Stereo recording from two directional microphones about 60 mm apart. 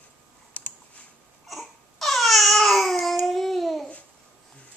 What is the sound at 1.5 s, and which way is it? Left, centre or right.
Babbling, centre.